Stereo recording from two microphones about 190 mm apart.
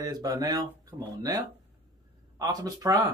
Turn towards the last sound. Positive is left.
turn(degrees=-20)  # may be behind; listen again after turning